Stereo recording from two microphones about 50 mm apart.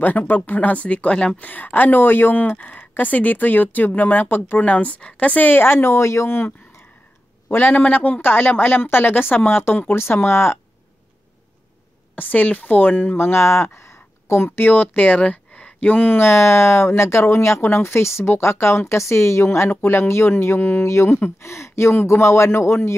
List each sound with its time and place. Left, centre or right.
0.0 s speech: left
1.4 s speech: left
7.4 s a woman's voice: left
12.2 s speech: left
14.7 s speech: left
15.5 s a sound: left
16.3 s speech: left
19.8 s a woman's voice: left
20.8 s speech: left